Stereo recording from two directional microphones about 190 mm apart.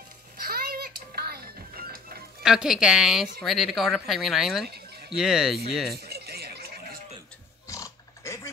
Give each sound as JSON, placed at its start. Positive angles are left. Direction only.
{"t": 0.4, "sound": "music", "side_deg": -50}
{"t": 2.4, "sound": "speech", "side_deg": 0}
{"t": 5.9, "sound": "a sound", "side_deg": -60}
{"t": 7.6, "sound": "pig", "side_deg": 15}